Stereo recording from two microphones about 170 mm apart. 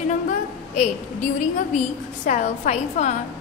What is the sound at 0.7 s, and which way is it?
A woman's voice, 45° left (ahead or behind).